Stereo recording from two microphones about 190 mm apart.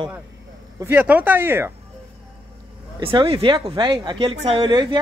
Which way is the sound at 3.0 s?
25° right (ahead or behind).